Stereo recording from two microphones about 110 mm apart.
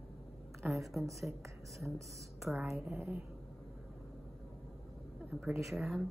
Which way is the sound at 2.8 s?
20° right (ahead or behind).